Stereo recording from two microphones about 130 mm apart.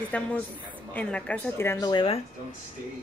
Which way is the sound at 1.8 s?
40° left (ahead or behind).